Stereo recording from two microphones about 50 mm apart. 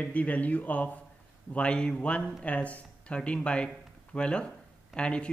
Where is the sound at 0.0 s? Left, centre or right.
Left.